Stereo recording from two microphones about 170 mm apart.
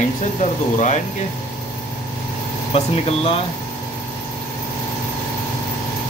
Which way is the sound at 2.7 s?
35° left (ahead or behind).